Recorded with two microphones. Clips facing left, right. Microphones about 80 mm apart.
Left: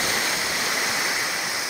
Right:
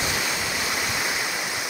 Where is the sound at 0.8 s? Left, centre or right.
Centre.